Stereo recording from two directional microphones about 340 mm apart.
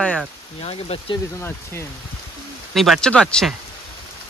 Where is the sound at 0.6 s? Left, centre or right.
Centre.